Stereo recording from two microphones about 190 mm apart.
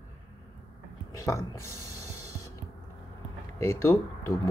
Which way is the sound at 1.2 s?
15° left (ahead or behind).